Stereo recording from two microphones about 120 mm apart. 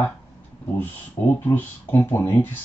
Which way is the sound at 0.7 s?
15° left (ahead or behind).